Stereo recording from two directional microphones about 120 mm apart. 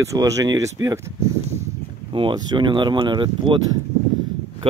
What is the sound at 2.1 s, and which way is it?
Speech, 40° right (ahead or behind).